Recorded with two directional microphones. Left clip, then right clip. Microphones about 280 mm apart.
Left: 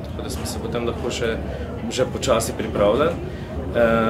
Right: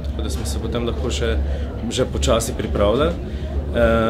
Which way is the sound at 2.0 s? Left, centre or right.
Centre.